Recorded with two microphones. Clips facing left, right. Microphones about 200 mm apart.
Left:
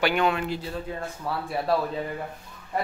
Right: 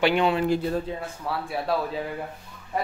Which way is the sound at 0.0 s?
25° right (ahead or behind).